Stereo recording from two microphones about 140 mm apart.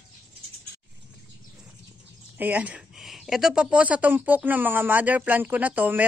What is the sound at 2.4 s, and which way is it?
Speech, 10° right (ahead or behind).